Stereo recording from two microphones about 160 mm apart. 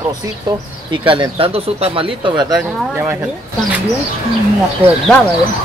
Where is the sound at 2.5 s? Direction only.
10° right (ahead or behind).